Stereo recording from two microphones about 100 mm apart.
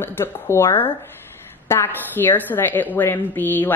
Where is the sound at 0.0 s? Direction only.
25° left (ahead or behind).